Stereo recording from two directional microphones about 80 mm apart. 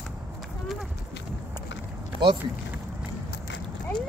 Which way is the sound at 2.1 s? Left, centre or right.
Left.